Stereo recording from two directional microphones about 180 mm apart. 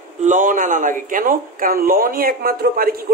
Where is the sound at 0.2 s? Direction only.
45° right (ahead or behind).